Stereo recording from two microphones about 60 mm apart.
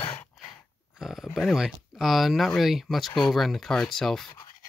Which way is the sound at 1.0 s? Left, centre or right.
Centre.